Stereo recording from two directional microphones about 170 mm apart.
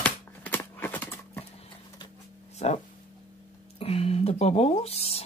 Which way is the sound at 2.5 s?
40° left (ahead or behind).